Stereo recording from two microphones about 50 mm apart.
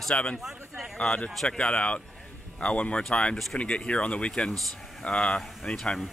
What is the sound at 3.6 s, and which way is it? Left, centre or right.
Speech, left.